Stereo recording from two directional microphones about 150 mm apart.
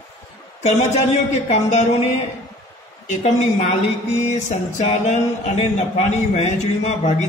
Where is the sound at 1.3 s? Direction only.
50° left (ahead or behind).